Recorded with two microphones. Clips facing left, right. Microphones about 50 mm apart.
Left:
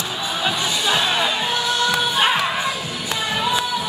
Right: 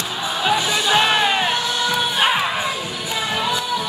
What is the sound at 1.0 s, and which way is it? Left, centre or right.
Music, right.